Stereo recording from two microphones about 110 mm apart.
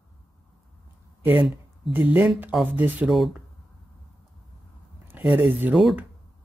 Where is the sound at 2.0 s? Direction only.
15° right (ahead or behind).